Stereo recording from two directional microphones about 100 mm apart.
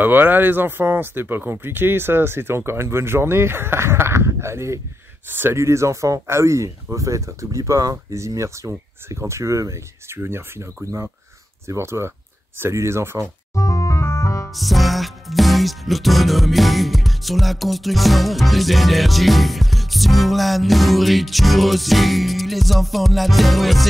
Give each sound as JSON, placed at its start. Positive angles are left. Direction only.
{"t": 0.0, "sound": "speech", "side_deg": -20}
{"t": 13.6, "sound": "music", "side_deg": 30}
{"t": 14.5, "sound": "music", "side_deg": 0}